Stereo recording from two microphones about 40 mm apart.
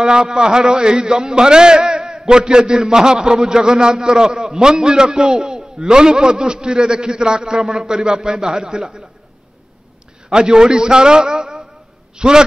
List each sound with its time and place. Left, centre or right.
0.0 s a man's voice: centre
10.3 s a man's voice: centre